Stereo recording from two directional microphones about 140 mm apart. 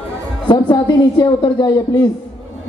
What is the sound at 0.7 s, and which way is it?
A man's voice, 30° left (ahead or behind).